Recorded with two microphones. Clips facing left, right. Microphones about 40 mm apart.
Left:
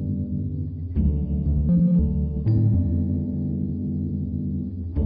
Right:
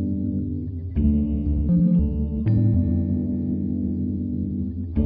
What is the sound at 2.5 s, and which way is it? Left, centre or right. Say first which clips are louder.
Music: right 2 dB; centre.